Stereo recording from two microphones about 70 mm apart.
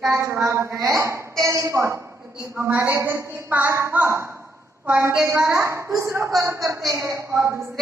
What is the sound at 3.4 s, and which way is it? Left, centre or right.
A woman's voice, right.